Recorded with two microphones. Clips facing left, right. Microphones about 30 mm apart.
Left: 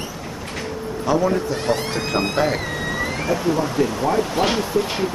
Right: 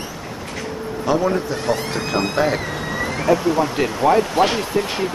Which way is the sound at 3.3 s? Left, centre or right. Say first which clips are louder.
Even; centre.